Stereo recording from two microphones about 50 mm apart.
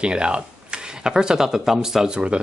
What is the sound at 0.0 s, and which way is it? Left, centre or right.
Speech, right.